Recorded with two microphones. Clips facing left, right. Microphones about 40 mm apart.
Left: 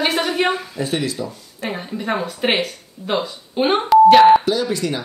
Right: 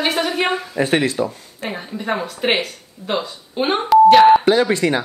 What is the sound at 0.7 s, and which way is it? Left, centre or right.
Speech, right.